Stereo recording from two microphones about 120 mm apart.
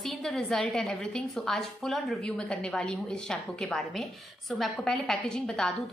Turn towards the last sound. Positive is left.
turn(degrees=5)  # may be behind; listen again after turning